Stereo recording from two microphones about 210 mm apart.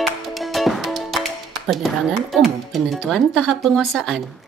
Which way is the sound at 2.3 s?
Centre (ahead or behind).